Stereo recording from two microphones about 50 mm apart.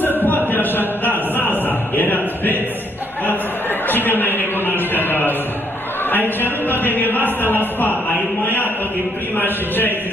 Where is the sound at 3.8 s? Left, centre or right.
Left.